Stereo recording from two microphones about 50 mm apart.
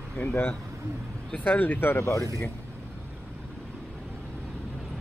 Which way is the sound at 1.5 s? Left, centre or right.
Left.